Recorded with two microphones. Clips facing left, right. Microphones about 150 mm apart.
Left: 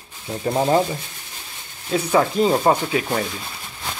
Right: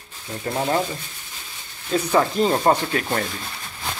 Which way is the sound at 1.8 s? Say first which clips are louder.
Left 1 dB; 5° left (ahead or behind).